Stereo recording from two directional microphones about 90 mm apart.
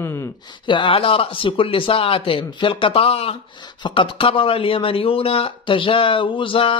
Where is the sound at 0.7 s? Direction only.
70° left (ahead or behind); by 3.3 s 90° left.